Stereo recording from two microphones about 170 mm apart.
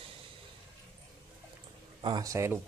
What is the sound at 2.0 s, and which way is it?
Speech, 20° right (ahead or behind).